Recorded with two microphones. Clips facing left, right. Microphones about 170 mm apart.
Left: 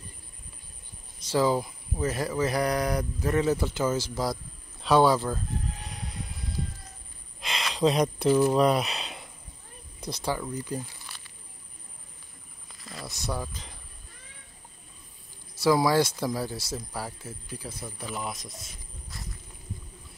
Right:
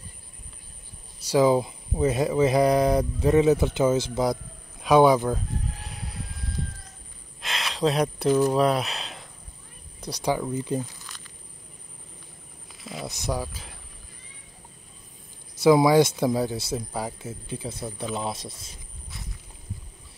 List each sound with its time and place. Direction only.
1.2 s speech: 15° right (ahead or behind)
5.8 s train: 5° right (ahead or behind)
7.3 s a sound: centre (ahead or behind)
8.3 s speech: 10° left (ahead or behind)
10.0 s speech: 15° right (ahead or behind)
12.7 s cricket: centre (ahead or behind)
13.0 s speech: 20° right (ahead or behind)
15.6 s speech: 20° right (ahead or behind)